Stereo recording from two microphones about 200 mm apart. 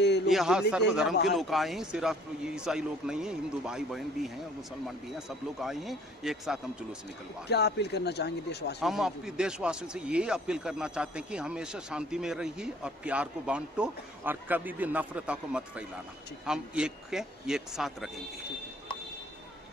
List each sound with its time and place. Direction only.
0.3 s speech: centre (ahead or behind)
5.6 s speech: centre (ahead or behind)
7.4 s a man's voice: 55° left (ahead or behind)
8.8 s speech: centre (ahead or behind)